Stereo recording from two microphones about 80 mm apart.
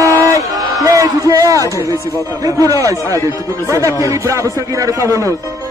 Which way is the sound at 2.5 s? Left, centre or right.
Right.